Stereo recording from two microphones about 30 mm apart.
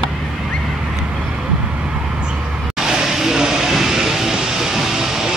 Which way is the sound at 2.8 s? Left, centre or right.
Centre.